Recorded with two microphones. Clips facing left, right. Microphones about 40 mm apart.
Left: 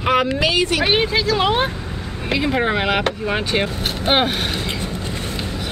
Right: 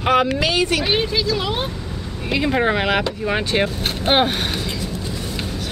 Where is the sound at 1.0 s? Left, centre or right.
Left.